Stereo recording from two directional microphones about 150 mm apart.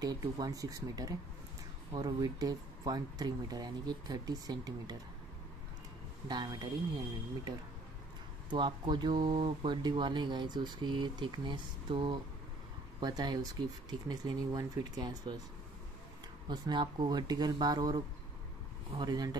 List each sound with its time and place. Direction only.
0.0 s speech: 25° right (ahead or behind)
6.2 s speech: 30° right (ahead or behind)
8.5 s speech: 30° right (ahead or behind)
16.4 s speech: 30° right (ahead or behind)